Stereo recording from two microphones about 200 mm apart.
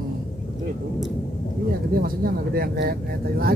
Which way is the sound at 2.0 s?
45° right (ahead or behind).